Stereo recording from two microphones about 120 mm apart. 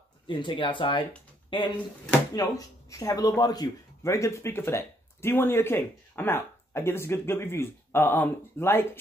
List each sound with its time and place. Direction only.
0.3 s speech: 45° left (ahead or behind)
2.3 s speech: 30° left (ahead or behind)